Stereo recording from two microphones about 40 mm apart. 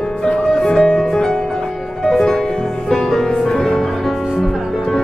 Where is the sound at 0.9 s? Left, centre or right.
Centre.